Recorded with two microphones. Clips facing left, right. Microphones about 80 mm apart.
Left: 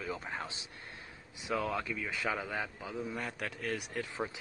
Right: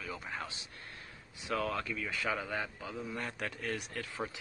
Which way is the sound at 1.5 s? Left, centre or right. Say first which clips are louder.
Left 1 dB; centre.